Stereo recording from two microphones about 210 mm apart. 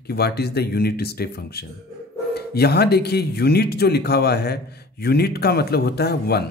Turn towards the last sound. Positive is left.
turn(degrees=50)  # may be behind; listen again after turning